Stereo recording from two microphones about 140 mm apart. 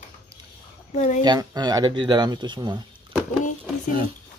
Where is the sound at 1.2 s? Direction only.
30° right (ahead or behind).